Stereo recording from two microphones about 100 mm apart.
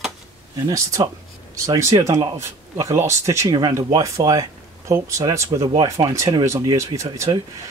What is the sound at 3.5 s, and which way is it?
Speech, 40° right (ahead or behind).